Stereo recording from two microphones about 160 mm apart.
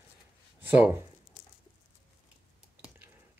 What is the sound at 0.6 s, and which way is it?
Speech, 10° right (ahead or behind).